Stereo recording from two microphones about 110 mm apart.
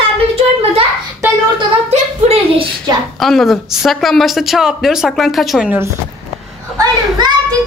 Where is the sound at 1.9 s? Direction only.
90° right.